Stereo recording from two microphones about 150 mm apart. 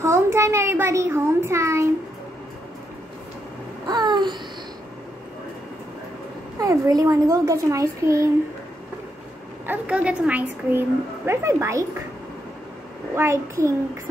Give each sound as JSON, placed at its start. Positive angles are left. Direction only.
{"t": 0.0, "sound": "a child's voice", "side_deg": -20}
{"t": 3.8, "sound": "babbling", "side_deg": -30}
{"t": 6.6, "sound": "a child's voice", "side_deg": -25}
{"t": 9.7, "sound": "a woman's voice", "side_deg": -10}
{"t": 13.1, "sound": "a child's voice", "side_deg": -20}